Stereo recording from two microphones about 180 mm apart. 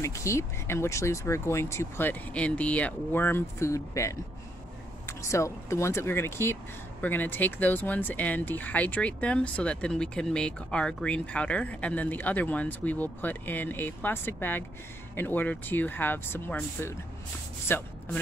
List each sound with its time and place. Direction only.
0.0 s speech: 15° left (ahead or behind)